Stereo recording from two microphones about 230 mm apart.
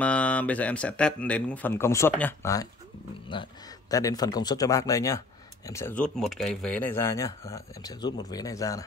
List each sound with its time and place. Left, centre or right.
0.0 s speech: centre